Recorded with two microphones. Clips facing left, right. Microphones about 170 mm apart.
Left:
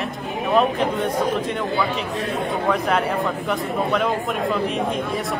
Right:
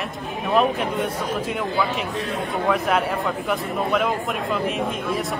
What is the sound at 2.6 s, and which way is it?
Speech, centre (ahead or behind).